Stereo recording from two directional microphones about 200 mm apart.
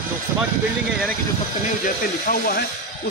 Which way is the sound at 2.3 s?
50° left (ahead or behind).